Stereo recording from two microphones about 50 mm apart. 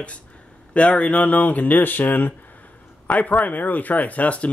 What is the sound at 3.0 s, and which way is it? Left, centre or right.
A man's voice, left.